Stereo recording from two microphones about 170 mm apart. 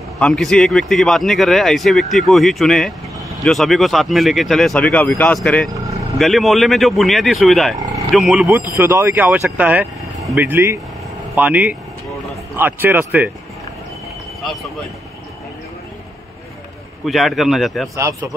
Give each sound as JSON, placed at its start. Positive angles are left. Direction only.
{"t": 0.2, "sound": "speech", "side_deg": 5}
{"t": 8.5, "sound": "speech", "side_deg": -15}
{"t": 10.4, "sound": "speech", "side_deg": -15}
{"t": 17.0, "sound": "speech", "side_deg": 0}
{"t": 17.9, "sound": "speech", "side_deg": -15}